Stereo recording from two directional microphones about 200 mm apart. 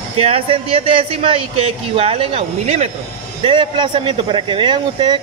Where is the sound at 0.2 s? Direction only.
30° right (ahead or behind).